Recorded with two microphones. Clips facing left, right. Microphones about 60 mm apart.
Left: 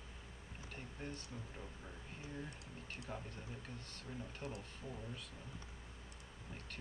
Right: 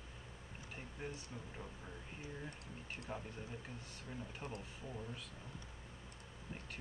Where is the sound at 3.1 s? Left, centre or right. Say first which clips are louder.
Right 2 dB; right.